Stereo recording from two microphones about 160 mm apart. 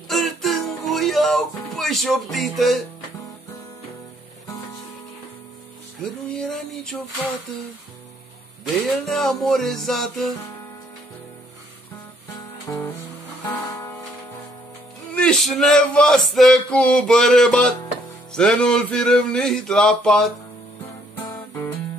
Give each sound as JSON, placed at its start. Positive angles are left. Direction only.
{"t": 0.1, "sound": "music", "side_deg": 0}
{"t": 6.3, "sound": "male singing", "side_deg": 5}
{"t": 9.0, "sound": "male singing", "side_deg": 0}
{"t": 12.6, "sound": "music", "side_deg": 20}
{"t": 15.1, "sound": "male singing", "side_deg": 5}
{"t": 21.3, "sound": "music", "side_deg": 15}